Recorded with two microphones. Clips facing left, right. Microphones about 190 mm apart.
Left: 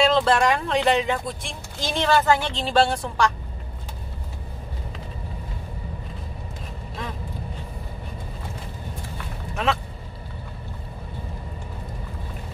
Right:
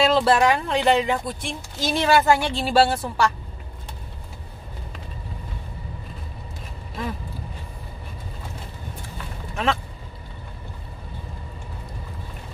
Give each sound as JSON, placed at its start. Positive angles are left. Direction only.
{"t": 0.0, "sound": "speech", "side_deg": -5}
{"t": 9.7, "sound": "speech", "side_deg": 0}